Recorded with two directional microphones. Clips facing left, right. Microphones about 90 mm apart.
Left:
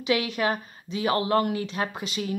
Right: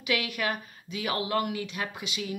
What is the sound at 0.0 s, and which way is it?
Speech, 25° left (ahead or behind).